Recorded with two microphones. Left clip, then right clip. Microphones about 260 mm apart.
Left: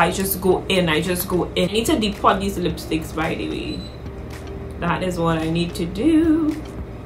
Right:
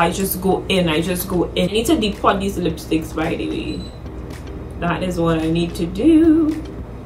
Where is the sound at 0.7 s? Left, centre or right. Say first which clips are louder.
Right 1 dB; centre.